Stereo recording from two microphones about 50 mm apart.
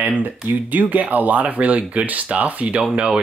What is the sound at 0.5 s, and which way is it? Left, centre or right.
Speech, right.